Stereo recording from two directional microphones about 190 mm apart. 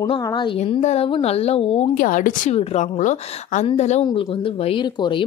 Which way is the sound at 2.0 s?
45° left (ahead or behind).